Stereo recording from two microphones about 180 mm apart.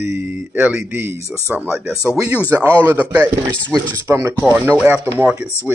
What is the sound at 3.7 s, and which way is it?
Speech, 20° right (ahead or behind).